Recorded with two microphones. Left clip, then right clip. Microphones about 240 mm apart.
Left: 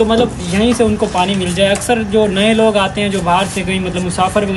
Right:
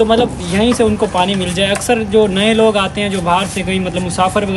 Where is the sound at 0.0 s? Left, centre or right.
Centre.